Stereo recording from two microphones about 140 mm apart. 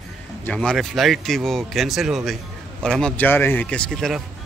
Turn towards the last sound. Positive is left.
turn(degrees=0)  # may be behind; listen again after turning